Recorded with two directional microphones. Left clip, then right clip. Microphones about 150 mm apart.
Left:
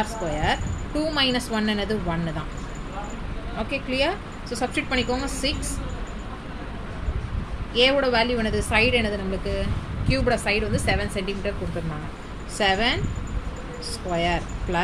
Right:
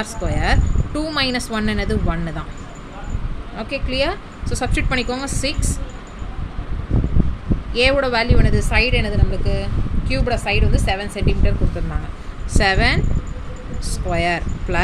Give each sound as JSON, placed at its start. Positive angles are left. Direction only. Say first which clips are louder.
{"t": 0.0, "sound": "a woman's voice", "louder": "right 2 dB", "side_deg": -45}
{"t": 3.5, "sound": "a woman's voice", "louder": "right 3 dB", "side_deg": -35}
{"t": 7.8, "sound": "speech", "louder": "right 3 dB", "side_deg": -40}
{"t": 12.5, "sound": "a woman's voice", "louder": "right 4 dB", "side_deg": -45}
{"t": 14.1, "sound": "speech", "louder": "right 4 dB", "side_deg": -45}